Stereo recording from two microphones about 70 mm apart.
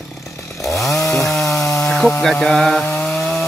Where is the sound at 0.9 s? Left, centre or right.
Left.